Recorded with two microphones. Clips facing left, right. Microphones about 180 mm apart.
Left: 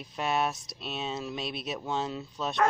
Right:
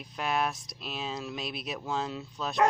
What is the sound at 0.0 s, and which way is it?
Speech, centre (ahead or behind).